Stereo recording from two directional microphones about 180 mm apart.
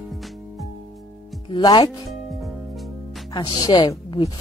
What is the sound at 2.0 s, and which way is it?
Music, centre (ahead or behind).